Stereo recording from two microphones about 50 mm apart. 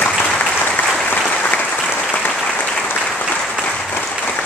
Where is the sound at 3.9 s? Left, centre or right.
Left.